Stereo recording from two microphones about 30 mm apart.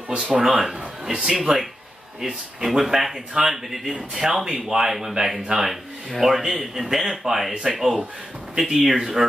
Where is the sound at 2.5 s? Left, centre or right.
Centre.